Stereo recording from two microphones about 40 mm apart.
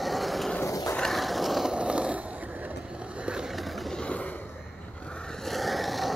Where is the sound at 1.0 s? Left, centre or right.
Centre.